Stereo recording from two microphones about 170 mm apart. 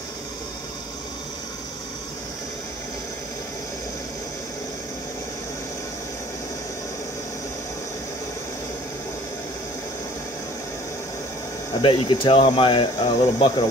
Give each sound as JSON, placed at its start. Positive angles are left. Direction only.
{"t": 11.8, "sound": "speech", "side_deg": 30}